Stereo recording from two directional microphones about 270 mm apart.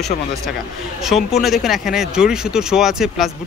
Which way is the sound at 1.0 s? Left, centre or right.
Centre.